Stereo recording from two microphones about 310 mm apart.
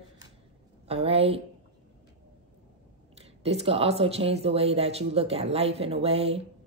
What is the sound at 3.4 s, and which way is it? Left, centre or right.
Speech, centre.